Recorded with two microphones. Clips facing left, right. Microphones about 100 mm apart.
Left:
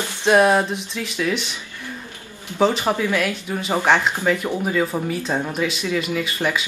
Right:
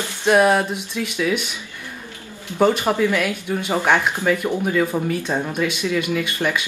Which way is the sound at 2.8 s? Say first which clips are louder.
Right 2 dB; 15° left (ahead or behind).